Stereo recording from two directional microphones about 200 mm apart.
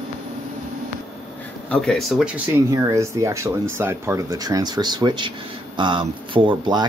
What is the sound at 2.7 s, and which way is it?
Speech, 15° right (ahead or behind).